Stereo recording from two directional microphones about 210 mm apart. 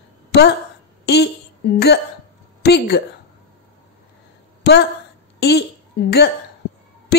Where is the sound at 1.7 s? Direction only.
50° left (ahead or behind).